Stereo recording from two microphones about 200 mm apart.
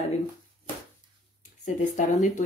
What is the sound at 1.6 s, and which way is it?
Speech, 40° left (ahead or behind).